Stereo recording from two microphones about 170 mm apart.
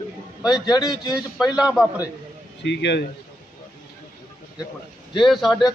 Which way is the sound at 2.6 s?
90° left.